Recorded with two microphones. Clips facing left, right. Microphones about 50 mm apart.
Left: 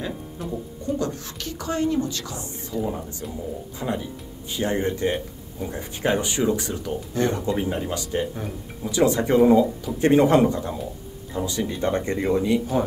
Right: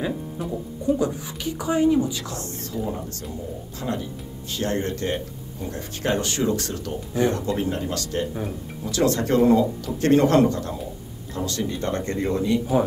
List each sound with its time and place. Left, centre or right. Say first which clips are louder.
0.0 s speech: right 3 dB; centre
2.7 s speech: left 2 dB; centre
8.4 s speech: right 2 dB; centre
8.9 s speech: left 2 dB; centre